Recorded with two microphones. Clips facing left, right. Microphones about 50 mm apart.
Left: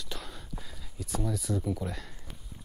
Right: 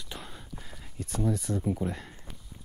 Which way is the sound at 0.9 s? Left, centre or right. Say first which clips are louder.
Right 3 dB; right.